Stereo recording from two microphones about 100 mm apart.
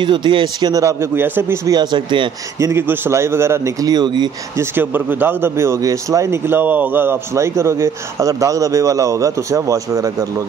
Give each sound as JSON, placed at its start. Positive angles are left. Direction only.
{"t": 0.0, "sound": "speech", "side_deg": -50}
{"t": 1.1, "sound": "a man's voice", "side_deg": -20}
{"t": 1.7, "sound": "speech", "side_deg": -45}
{"t": 2.6, "sound": "a man's voice", "side_deg": -30}
{"t": 4.6, "sound": "speech", "side_deg": -20}